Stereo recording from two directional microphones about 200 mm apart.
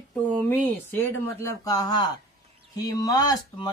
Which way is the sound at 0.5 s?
10° left (ahead or behind).